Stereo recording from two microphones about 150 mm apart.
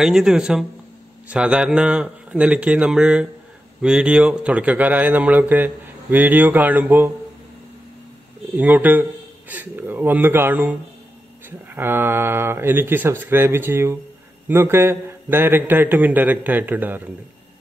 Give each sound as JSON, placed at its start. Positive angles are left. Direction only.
{"t": 0.0, "sound": "a man's voice", "side_deg": -5}
{"t": 8.5, "sound": "a man's voice", "side_deg": -10}